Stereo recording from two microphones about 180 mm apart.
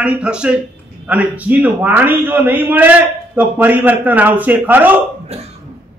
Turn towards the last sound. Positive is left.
turn(degrees=-35)  # may be behind; listen again after turning